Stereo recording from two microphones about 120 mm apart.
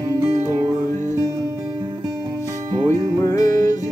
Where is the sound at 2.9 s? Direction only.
25° left (ahead or behind).